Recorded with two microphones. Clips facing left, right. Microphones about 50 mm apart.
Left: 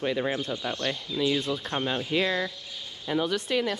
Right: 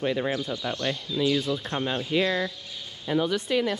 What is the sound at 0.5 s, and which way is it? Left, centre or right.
Speech, centre.